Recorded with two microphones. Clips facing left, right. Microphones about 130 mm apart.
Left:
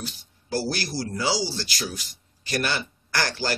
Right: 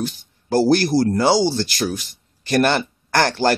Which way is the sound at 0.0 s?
50° right (ahead or behind).